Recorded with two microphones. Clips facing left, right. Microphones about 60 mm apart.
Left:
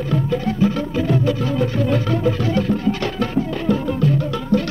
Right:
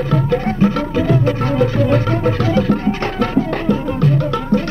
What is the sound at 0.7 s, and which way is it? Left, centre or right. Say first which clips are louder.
Music: right 4 dB; right.